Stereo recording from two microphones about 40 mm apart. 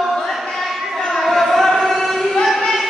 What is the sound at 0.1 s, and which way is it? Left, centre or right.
Choir, centre.